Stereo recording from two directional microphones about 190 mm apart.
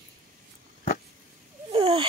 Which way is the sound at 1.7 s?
30° right (ahead or behind).